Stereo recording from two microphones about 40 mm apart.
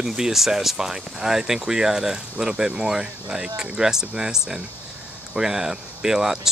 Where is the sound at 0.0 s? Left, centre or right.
Centre.